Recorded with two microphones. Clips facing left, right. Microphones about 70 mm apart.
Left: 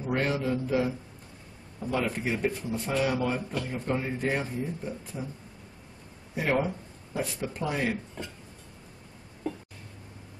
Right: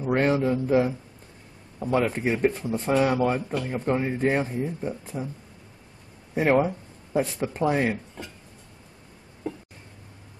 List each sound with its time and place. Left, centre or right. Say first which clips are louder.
0.0 s a sound: right 6 dB; right
1.8 s speech: right 5 dB; right
6.3 s speech: right 6 dB; right